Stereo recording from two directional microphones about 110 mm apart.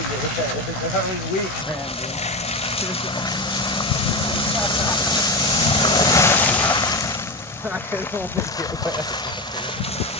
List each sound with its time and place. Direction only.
3.7 s vehicle: 45° left (ahead or behind)
6.1 s boat: 20° left (ahead or behind)
6.7 s boat: 35° left (ahead or behind)